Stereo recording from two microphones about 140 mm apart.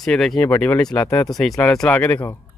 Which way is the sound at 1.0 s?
25° left (ahead or behind).